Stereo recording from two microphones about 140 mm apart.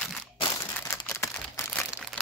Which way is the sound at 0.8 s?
20° left (ahead or behind).